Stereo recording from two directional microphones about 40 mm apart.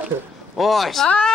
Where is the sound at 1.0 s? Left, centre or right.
Left.